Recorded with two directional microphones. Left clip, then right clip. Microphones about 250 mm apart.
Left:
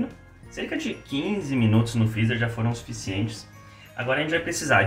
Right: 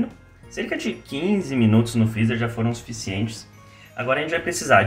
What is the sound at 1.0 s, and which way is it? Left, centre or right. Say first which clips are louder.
Speech: right 6 dB; right.